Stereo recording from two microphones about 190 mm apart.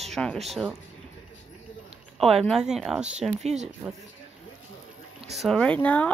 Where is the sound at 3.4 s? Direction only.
35° right (ahead or behind).